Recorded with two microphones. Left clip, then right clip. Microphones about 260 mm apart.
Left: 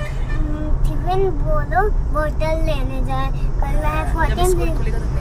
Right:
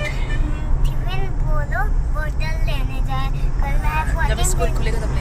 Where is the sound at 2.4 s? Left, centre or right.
Left.